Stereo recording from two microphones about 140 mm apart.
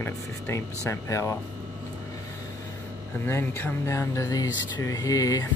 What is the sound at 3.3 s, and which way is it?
Speech, 15° left (ahead or behind).